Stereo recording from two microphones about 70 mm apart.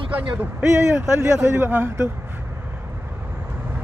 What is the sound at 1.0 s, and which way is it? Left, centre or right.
A man's voice, right.